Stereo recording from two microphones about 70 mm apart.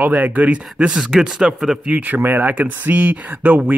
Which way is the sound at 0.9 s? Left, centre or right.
Centre.